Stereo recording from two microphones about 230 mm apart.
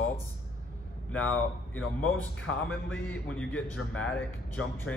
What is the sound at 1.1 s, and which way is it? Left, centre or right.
Speech, centre.